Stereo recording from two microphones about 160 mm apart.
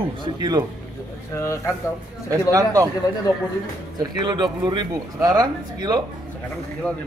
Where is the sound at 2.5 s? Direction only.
20° right (ahead or behind).